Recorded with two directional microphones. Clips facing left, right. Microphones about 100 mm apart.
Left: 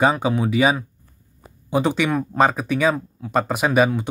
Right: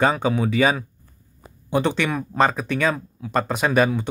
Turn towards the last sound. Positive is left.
turn(degrees=5)  # may be behind; listen again after turning